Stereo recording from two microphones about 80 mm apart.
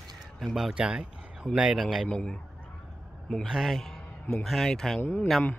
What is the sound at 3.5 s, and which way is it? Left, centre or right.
A man's voice, centre.